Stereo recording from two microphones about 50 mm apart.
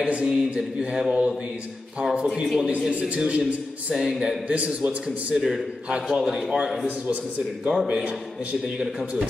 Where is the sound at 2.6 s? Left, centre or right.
Right.